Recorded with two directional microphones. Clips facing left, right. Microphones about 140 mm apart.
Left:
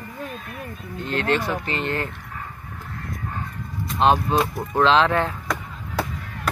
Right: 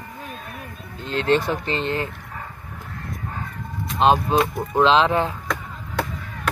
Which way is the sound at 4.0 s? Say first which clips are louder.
Right 1 dB; 20° right (ahead or behind).